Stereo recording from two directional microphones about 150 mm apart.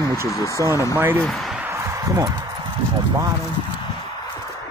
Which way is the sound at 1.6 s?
20° right (ahead or behind).